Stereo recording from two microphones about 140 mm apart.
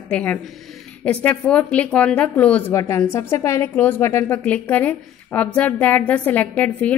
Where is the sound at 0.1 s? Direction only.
10° left (ahead or behind).